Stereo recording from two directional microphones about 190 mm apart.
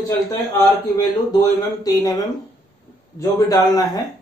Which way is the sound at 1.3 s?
20° left (ahead or behind).